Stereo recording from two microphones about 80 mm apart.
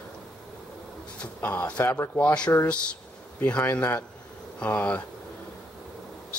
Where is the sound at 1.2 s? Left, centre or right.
Centre.